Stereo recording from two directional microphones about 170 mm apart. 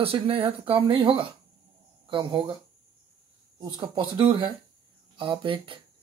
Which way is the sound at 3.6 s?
25° right (ahead or behind).